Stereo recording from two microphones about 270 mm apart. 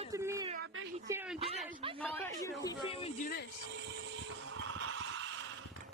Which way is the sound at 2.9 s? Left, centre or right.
Left.